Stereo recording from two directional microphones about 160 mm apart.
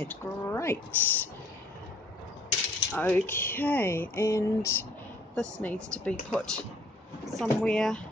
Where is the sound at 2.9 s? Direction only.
10° left (ahead or behind).